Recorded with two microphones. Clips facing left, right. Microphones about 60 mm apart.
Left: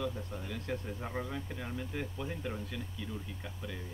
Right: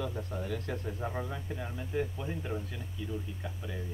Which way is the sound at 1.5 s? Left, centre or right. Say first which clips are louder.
Right 4 dB; right.